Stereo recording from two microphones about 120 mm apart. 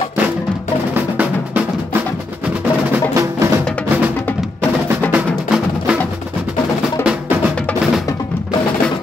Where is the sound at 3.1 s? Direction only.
25° right (ahead or behind).